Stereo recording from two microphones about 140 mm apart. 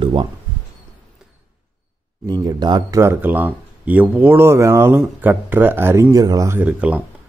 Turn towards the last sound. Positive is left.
turn(degrees=-10)  # may be behind; listen again after turning